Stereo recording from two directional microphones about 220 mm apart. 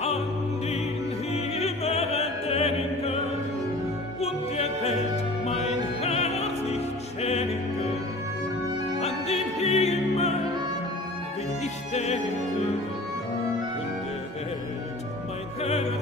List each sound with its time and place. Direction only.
1.3 s opera: 30° left (ahead or behind)
4.2 s music: 30° left (ahead or behind)
9.0 s music: 30° left (ahead or behind)
11.9 s music: 30° left (ahead or behind)